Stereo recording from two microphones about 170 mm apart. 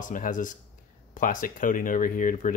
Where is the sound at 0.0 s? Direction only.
50° left (ahead or behind).